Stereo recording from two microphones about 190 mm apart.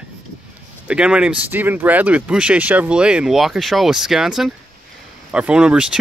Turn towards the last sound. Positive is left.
turn(degrees=-5)  # may be behind; listen again after turning